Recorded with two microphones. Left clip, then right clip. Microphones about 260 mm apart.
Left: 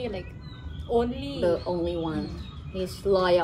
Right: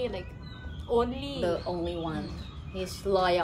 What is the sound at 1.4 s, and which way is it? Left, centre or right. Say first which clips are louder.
Speech: left 5 dB; centre.